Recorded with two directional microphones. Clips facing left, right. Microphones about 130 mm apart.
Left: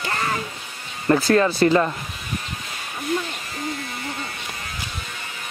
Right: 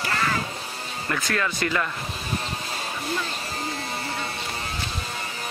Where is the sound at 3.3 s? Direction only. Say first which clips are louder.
Left 1 dB; 30° right (ahead or behind).